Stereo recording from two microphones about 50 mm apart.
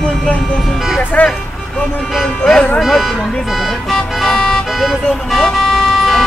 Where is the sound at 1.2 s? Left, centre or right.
Left.